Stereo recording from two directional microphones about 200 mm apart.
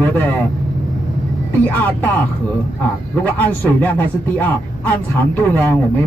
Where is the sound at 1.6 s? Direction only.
10° left (ahead or behind).